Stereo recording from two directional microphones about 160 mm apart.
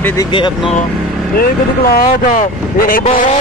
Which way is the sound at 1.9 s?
65° left (ahead or behind).